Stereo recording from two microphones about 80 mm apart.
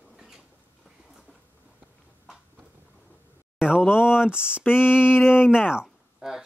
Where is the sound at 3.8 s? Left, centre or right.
Left.